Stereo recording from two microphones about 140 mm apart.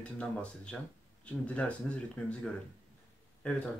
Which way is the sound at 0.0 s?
10° left (ahead or behind).